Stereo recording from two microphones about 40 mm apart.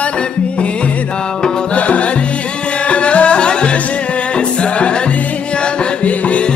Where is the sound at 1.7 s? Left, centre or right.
Left.